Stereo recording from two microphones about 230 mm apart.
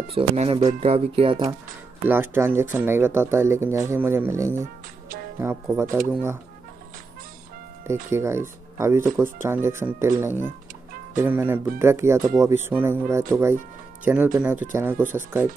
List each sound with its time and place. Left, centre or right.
0.1 s speech: right
2.0 s speech: centre
7.8 s speech: centre